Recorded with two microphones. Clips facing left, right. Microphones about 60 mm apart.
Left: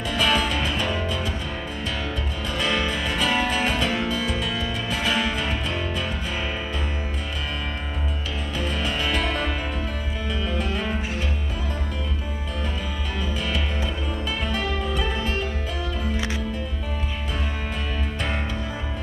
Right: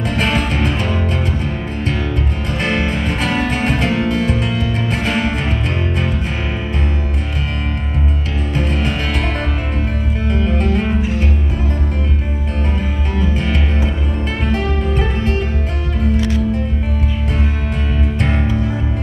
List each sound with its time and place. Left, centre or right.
0.1 s music: right
2.6 s music: right
10.2 s music: right
13.2 s music: right
16.2 s music: centre